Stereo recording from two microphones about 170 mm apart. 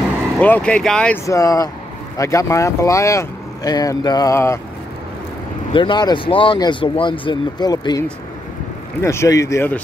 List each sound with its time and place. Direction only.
0.4 s speech: 10° left (ahead or behind)
1.2 s speech: 20° left (ahead or behind)
5.7 s speech: 30° left (ahead or behind)
9.0 s speech: 15° left (ahead or behind)